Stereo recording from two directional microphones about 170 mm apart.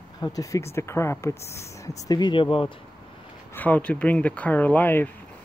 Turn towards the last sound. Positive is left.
turn(degrees=10)  # may be behind; listen again after turning